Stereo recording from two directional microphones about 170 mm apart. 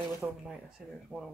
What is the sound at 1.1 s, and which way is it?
Speech, 5° left (ahead or behind).